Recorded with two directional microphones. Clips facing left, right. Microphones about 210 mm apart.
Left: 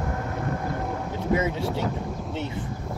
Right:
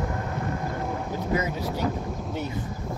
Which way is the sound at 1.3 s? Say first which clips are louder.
Left 3 dB; 25° left (ahead or behind).